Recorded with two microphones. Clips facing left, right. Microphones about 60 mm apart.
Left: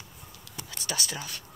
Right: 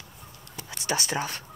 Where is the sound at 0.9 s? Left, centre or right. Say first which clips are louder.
Right 7 dB; right.